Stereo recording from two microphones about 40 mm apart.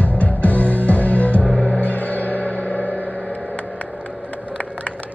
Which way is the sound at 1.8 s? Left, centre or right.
Left.